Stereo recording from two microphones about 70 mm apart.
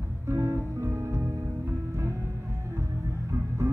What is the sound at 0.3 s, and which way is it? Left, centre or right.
Music, right.